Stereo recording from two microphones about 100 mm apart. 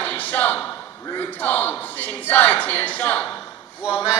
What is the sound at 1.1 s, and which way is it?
A man's voice, 15° left (ahead or behind).